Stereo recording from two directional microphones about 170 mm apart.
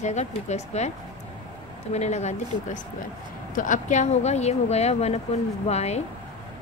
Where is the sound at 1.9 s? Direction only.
40° left (ahead or behind).